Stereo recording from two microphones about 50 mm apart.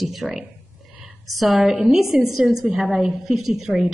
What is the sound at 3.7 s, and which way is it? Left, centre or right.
Speech, centre.